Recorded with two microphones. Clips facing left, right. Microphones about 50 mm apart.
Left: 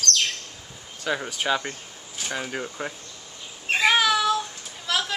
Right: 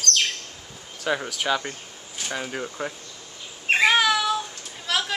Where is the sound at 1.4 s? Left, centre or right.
Centre.